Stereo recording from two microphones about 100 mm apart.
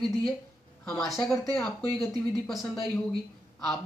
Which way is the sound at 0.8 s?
5° left (ahead or behind).